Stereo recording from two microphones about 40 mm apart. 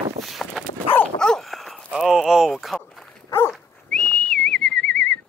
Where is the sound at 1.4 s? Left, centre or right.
Centre.